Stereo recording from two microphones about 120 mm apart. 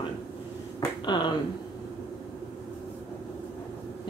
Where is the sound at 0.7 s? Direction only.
40° left (ahead or behind).